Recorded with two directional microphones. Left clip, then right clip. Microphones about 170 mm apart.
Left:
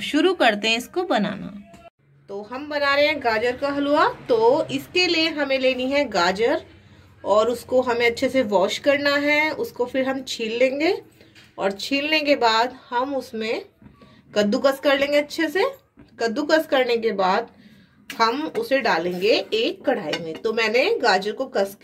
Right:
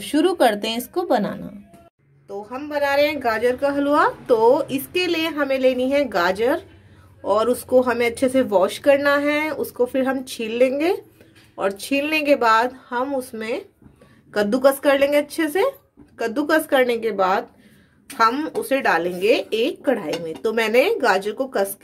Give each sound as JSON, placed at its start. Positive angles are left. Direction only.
{"t": 0.0, "sound": "speech", "side_deg": -30}
{"t": 2.2, "sound": "a woman's voice", "side_deg": -10}